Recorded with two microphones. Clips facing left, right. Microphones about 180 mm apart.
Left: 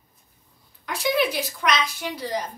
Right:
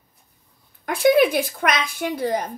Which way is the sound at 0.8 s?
50° right (ahead or behind).